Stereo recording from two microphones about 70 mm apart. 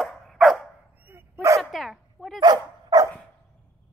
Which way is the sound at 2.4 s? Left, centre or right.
Right.